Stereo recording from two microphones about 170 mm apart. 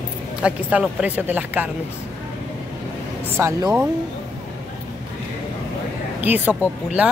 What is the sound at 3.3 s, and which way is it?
Speech, 15° right (ahead or behind).